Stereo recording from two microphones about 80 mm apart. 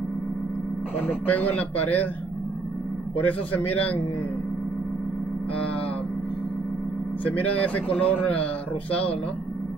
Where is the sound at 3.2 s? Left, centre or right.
Centre.